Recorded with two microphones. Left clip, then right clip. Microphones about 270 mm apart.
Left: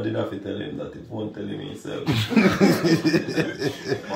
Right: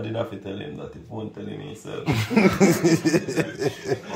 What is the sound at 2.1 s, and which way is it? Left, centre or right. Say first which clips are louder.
A man's voice: even; centre.